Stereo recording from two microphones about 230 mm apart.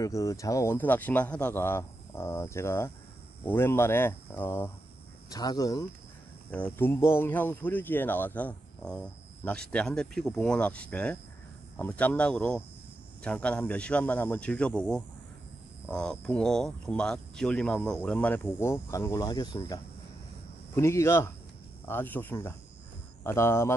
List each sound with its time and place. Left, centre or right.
0.0 s speech: centre